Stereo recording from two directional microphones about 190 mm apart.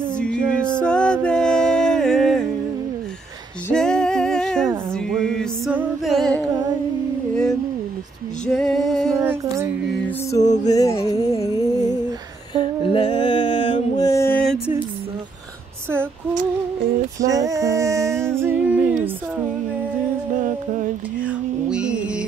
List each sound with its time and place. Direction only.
0.1 s music: 5° left (ahead or behind)
3.6 s music: 5° left (ahead or behind)
8.5 s female singing: centre (ahead or behind)
9.2 s music: 15° right (ahead or behind)
10.4 s music: 40° left (ahead or behind)
10.7 s music: 20° left (ahead or behind)
17.3 s a sound: 15° right (ahead or behind)
20.3 s music: 40° right (ahead or behind)
21.3 s music: 5° right (ahead or behind)